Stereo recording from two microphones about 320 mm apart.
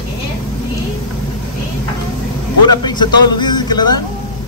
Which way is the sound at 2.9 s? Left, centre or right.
Centre.